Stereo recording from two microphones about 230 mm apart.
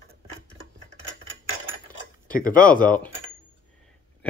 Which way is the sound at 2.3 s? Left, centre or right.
Left.